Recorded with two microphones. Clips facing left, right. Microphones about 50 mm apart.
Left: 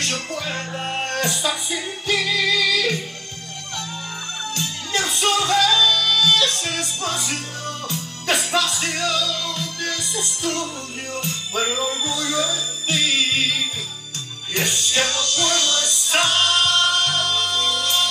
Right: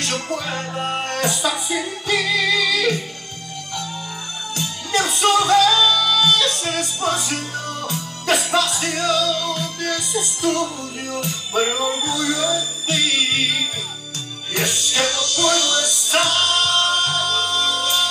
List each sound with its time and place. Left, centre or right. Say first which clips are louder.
0.1 s music: right 2 dB; right
4.6 s music: right 4 dB; right
10.6 s music: right 4 dB; left
11.5 s music: right 3 dB; right
12.8 s music: left 1 dB; left
14.5 s music: even; left
16.6 s music: even; right
17.0 s music: right 1 dB; left
17.6 s music: right 1 dB; right